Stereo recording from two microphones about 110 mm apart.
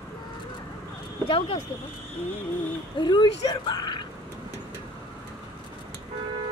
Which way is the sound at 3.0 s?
40° left (ahead or behind).